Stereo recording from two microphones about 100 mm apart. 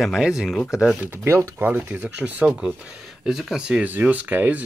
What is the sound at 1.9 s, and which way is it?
Speech, 15° right (ahead or behind).